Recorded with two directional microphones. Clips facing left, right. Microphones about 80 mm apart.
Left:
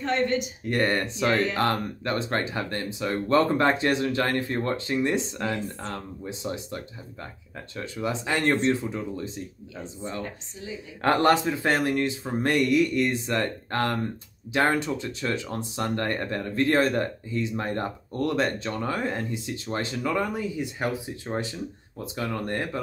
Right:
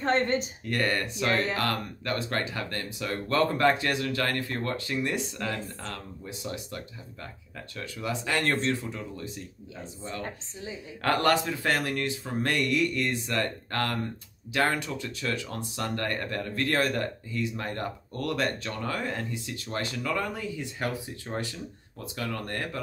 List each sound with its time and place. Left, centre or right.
0.0 s speech: right
0.7 s speech: left
11.0 s speech: left